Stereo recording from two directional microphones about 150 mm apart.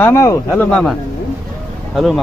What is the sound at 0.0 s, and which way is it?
Speech, 20° left (ahead or behind).